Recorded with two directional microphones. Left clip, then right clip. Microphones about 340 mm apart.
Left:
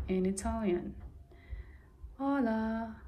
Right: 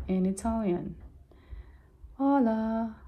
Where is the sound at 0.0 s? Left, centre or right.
Centre.